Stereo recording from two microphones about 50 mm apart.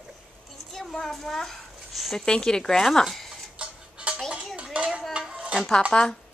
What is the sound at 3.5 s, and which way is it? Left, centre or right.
Music, right.